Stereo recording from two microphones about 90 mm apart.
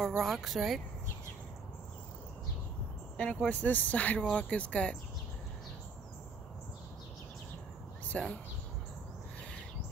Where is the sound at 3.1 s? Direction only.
15° left (ahead or behind).